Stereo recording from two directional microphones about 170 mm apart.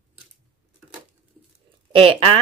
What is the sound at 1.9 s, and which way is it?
Speech, 35° right (ahead or behind).